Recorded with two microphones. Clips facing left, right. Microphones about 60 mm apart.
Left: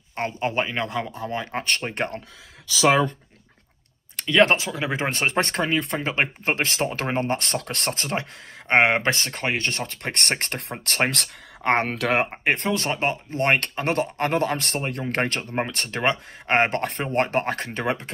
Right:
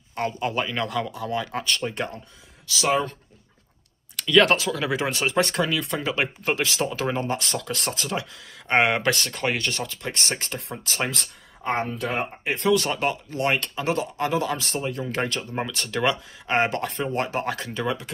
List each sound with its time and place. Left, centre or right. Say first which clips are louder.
0.1 s speech: even; left
1.6 s speech: left 1 dB; left
4.2 s speech: even; left
12.5 s speech: right 3 dB; left